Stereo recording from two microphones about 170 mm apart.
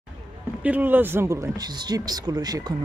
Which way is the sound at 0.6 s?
10° right (ahead or behind).